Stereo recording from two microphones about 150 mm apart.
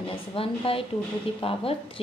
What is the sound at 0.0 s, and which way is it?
A woman's voice, 35° left (ahead or behind).